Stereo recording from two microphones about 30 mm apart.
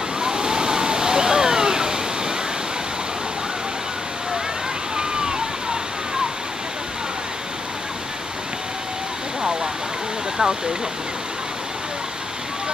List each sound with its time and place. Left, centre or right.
0.2 s waterfall: right
4.9 s waterfall: right
10.4 s speech: right